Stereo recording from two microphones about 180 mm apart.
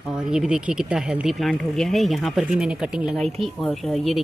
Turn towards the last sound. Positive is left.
turn(degrees=0)  # may be behind; listen again after turning